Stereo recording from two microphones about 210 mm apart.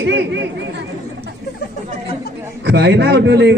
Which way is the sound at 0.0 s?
60° right (ahead or behind).